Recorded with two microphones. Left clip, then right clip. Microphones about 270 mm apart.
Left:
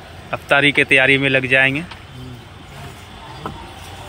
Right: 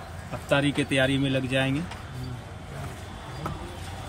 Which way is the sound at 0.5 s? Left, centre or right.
Left.